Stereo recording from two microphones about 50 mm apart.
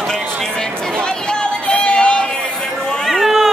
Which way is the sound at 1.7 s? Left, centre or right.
Centre.